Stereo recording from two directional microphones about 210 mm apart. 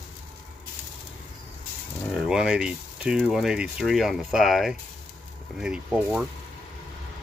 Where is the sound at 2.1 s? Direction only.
Centre (ahead or behind).